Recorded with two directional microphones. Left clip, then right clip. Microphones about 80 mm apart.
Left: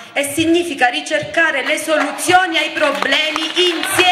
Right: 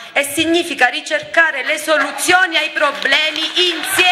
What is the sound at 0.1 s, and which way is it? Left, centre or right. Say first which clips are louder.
A man's voice: even; right.